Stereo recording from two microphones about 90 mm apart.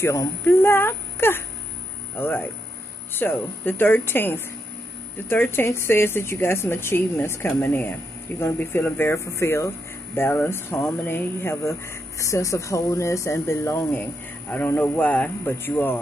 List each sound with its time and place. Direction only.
0.0 s a woman's voice: 30° left (ahead or behind)
14.5 s a woman's voice: 20° left (ahead or behind)